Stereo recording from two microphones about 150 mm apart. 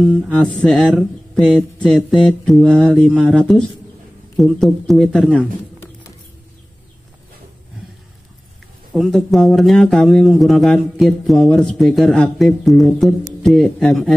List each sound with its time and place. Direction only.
0.3 s speech: 5° left (ahead or behind)
8.9 s speech: centre (ahead or behind)